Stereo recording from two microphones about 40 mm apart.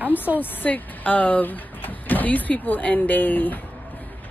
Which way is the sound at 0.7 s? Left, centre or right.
Left.